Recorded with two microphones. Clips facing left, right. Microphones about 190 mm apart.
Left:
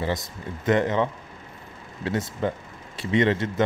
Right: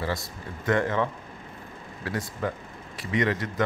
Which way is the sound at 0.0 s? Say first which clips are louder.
Left 3 dB; 20° left (ahead or behind).